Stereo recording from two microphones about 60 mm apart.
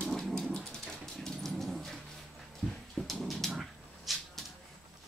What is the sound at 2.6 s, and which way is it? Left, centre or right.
Dog, centre.